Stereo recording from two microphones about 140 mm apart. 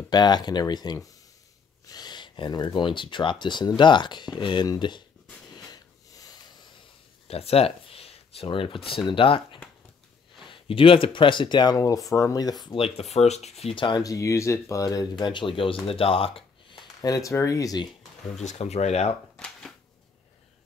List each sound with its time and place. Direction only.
0.1 s speech: 30° left (ahead or behind)
5.5 s wheeze: 30° left (ahead or behind)
7.2 s speech: 45° left (ahead or behind); by 12.5 s 25° left (ahead or behind)
12.6 s speech: 40° left (ahead or behind)
13.1 s speech: 50° left (ahead or behind)
15.9 s a sound: 40° left (ahead or behind)
17.0 s speech: 25° left (ahead or behind)
18.4 s speech: 55° left (ahead or behind)
19.3 s a sound: 5° left (ahead or behind)